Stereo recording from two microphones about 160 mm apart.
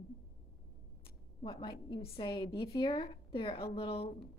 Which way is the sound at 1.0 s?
30° left (ahead or behind).